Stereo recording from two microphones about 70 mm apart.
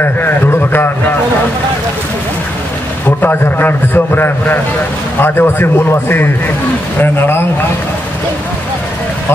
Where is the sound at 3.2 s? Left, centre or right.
Left.